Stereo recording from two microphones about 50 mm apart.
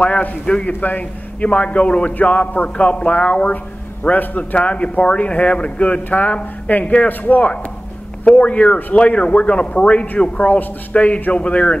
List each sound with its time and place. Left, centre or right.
0.0 s a man's voice: left
4.6 s speech: left